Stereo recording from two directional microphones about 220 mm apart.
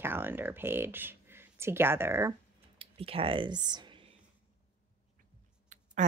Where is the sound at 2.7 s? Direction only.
25° right (ahead or behind).